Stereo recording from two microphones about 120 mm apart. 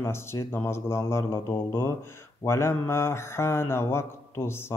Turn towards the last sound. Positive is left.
turn(degrees=20)  # may be behind; listen again after turning